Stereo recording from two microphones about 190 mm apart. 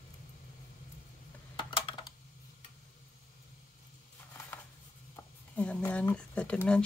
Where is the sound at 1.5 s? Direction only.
25° left (ahead or behind).